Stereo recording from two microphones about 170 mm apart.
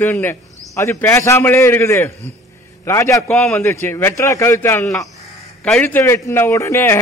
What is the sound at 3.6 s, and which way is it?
Speech, 15° left (ahead or behind).